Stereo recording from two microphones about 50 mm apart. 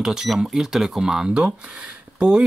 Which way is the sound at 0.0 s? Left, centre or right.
Centre.